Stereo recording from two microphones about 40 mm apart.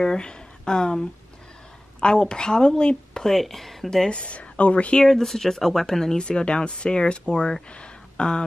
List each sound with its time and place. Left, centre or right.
0.0 s speech: centre
2.0 s speech: left
3.3 s speech: centre
4.1 s speech: left
5.0 s speech: centre
7.7 s a sound: left